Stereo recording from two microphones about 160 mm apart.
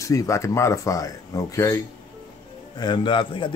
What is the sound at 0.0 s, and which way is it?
A man's voice, 20° left (ahead or behind).